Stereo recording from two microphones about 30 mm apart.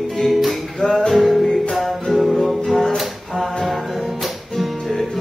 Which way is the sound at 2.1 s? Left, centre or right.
Centre.